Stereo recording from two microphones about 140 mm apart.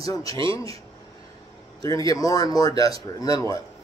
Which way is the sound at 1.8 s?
25° left (ahead or behind).